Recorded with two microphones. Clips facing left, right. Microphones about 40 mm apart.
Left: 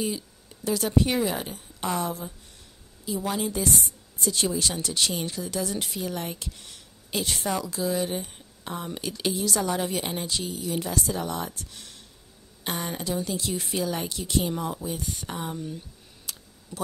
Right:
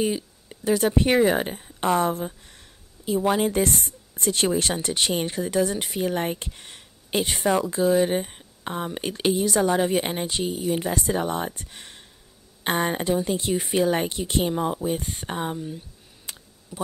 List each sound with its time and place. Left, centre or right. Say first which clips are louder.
0.0 s speech: right 5 dB; right
4.7 s speech: right 3 dB; right
15.5 s speech: right 2 dB; centre
16.3 s a sound: right 1 dB; right
16.7 s speech: right 2 dB; centre